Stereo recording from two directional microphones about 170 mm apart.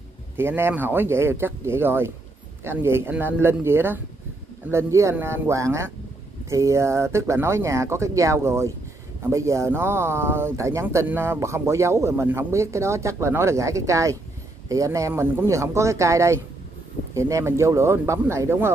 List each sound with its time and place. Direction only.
0.4 s speech: 15° right (ahead or behind)